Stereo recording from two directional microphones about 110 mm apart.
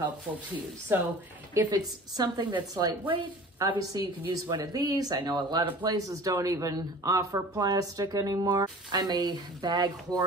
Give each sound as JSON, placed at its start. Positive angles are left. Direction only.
{"t": 0.9, "sound": "speech", "side_deg": -20}
{"t": 1.7, "sound": "speech", "side_deg": -40}